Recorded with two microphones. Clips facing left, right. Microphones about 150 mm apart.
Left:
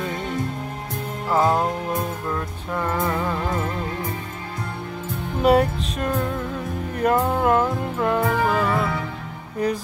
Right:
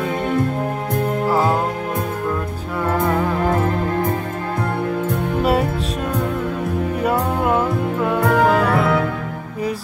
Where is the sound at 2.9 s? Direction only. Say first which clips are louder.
Right 6 dB; 55° right (ahead or behind).